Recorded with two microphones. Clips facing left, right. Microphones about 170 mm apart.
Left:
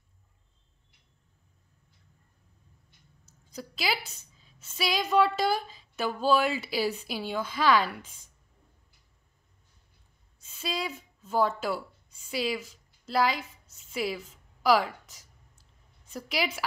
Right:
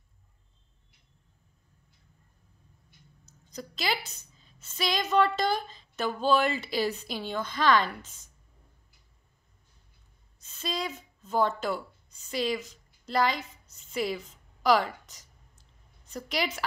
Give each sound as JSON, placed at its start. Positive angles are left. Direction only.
{"t": 3.3, "sound": "a woman's voice", "side_deg": 5}
{"t": 10.4, "sound": "a woman's voice", "side_deg": 5}